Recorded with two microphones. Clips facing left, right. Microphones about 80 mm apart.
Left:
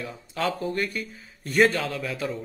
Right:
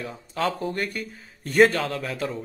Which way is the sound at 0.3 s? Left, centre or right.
Right.